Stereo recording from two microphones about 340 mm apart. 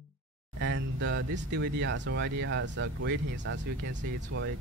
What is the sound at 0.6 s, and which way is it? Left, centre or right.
Speech, right.